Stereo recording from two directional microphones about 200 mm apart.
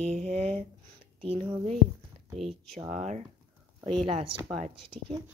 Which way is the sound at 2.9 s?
35° right (ahead or behind).